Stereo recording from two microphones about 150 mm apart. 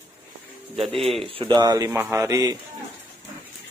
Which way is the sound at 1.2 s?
35° right (ahead or behind).